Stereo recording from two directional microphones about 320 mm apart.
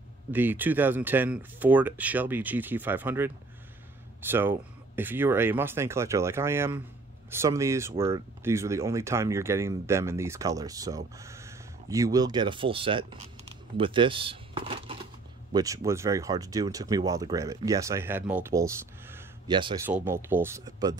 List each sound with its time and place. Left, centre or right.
0.3 s speech: centre